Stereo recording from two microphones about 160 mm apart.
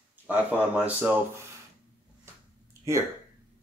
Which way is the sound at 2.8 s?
20° right (ahead or behind).